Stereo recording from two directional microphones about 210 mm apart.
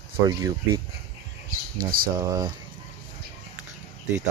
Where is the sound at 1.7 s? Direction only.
45° right (ahead or behind).